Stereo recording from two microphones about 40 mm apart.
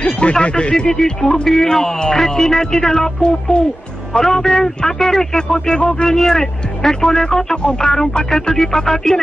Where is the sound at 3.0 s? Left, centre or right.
Left.